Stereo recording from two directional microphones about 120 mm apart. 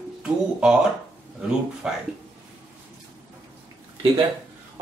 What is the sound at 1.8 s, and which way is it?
Speech, 5° right (ahead or behind).